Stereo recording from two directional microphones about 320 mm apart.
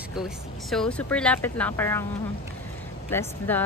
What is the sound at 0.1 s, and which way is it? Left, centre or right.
Speech, centre.